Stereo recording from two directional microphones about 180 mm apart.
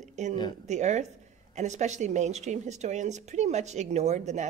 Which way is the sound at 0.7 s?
40° right (ahead or behind).